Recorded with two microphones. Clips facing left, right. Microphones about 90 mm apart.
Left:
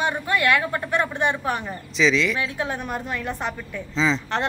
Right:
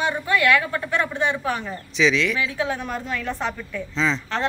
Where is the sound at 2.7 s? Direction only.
20° left (ahead or behind).